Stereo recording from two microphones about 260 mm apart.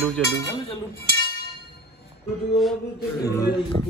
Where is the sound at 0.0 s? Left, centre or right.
Centre.